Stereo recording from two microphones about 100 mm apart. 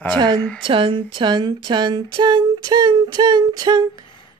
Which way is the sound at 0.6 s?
60° right (ahead or behind).